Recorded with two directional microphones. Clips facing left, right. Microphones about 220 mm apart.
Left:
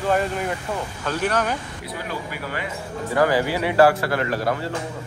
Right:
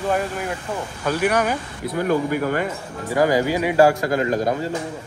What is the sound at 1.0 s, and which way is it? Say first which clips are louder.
Speech: right 4 dB; 10° right (ahead or behind).